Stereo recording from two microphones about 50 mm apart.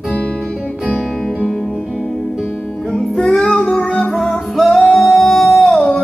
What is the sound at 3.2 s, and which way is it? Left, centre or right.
Music, centre.